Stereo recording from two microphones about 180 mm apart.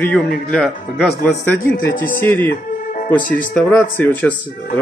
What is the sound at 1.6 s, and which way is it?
Speech, 50° left (ahead or behind).